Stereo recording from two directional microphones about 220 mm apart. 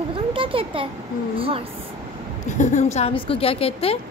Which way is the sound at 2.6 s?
35° left (ahead or behind).